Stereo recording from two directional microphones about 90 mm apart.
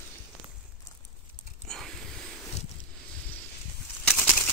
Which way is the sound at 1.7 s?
5° left (ahead or behind).